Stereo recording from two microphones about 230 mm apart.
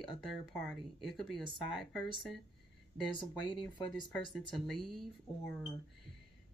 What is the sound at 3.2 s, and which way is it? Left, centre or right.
Speech, left.